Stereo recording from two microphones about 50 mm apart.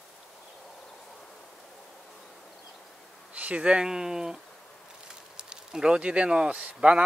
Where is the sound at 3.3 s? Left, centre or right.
Right.